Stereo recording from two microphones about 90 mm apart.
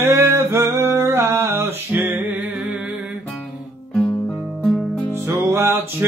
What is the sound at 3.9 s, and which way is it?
Guitar, 20° left (ahead or behind).